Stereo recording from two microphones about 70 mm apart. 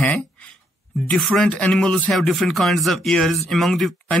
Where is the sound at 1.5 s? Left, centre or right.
Centre.